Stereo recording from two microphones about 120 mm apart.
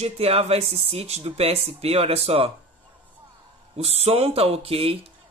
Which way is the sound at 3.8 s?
60° right (ahead or behind).